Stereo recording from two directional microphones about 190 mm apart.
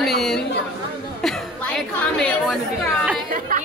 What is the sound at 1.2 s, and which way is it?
Chatter, centre (ahead or behind).